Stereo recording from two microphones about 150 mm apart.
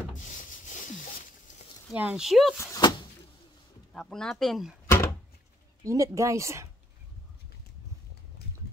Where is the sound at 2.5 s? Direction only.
20° left (ahead or behind).